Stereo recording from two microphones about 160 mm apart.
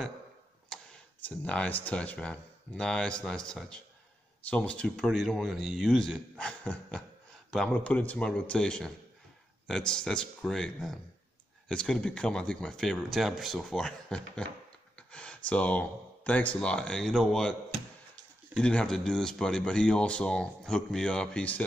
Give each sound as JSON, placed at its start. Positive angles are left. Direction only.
{"t": 0.7, "sound": "speech", "side_deg": 5}
{"t": 18.6, "sound": "speech", "side_deg": 5}